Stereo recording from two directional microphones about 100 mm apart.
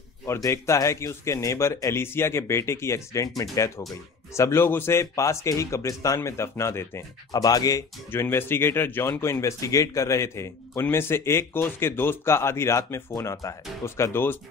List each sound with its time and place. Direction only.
0.3 s speech: 30° left (ahead or behind)
7.3 s speech: 35° left (ahead or behind)
8.1 s speech: 25° left (ahead or behind)